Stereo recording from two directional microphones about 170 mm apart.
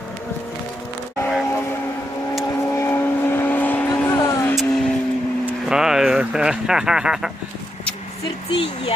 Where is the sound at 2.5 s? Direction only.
15° left (ahead or behind).